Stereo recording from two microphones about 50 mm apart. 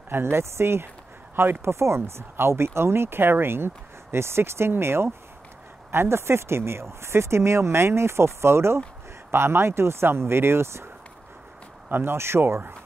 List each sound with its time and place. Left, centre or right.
0.1 s speech: right
1.3 s speech: right
1.6 s speech: right
11.9 s speech: right